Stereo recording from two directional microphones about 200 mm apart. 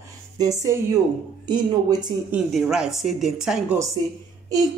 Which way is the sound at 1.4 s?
20° right (ahead or behind).